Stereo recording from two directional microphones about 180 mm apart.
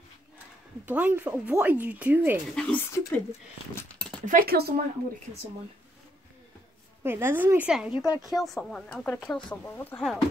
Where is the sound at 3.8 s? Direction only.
5° left (ahead or behind).